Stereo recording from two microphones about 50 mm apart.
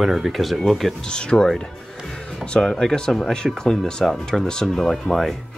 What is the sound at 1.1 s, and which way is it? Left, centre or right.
Speech, centre.